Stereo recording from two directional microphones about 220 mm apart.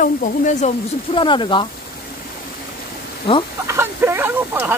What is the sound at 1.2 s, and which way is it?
Speech, 20° left (ahead or behind).